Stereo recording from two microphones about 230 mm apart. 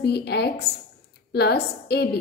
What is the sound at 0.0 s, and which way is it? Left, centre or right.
A woman's voice, left.